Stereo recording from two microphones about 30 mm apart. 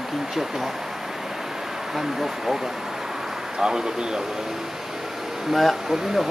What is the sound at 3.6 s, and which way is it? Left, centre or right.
Speech, right.